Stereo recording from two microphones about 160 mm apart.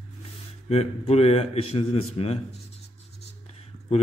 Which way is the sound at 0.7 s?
40° left (ahead or behind).